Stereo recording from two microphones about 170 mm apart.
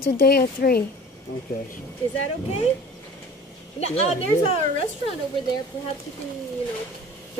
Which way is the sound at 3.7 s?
40° left (ahead or behind).